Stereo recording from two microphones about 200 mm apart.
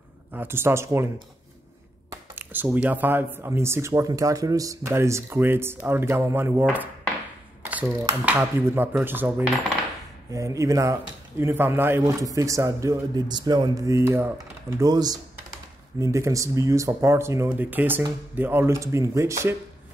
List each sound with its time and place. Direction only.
0.3 s speech: 10° right (ahead or behind)
8.3 s speech: 10° right (ahead or behind)
10.3 s speech: 15° right (ahead or behind)